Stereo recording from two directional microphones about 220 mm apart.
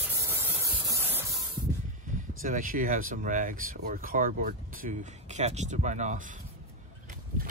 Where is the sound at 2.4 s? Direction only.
40° right (ahead or behind).